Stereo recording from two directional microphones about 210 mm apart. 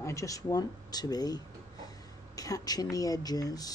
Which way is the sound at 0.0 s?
15° left (ahead or behind).